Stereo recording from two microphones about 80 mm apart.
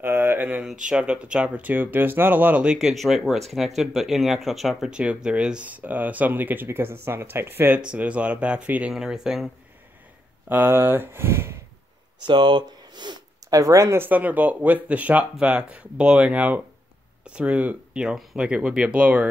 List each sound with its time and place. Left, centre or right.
0.0 s a sound: right
0.7 s speech: centre
2.6 s speech: centre
10.5 s speech: right
12.3 s speech: right
13.5 s speech: right
13.9 s speech: right
18.0 s speech: centre